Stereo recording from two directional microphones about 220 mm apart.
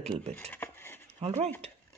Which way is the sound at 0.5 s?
10° left (ahead or behind).